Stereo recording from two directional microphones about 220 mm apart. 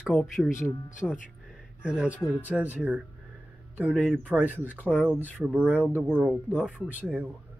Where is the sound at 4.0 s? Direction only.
5° left (ahead or behind).